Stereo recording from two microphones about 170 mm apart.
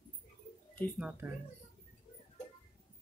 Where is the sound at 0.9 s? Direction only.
5° right (ahead or behind).